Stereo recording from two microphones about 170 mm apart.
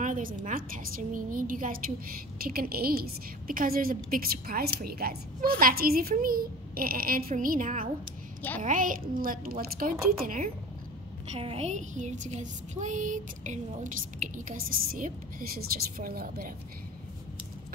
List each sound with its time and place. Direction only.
0.0 s a woman's voice: 50° right (ahead or behind)
8.4 s a woman's voice: 10° left (ahead or behind)
8.6 s a woman's voice: 50° right (ahead or behind)
11.3 s a woman's voice: 35° right (ahead or behind); by 16.5 s 60° right (ahead or behind)